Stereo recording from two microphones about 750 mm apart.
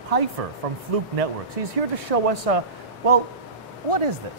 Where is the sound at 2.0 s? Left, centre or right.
Right.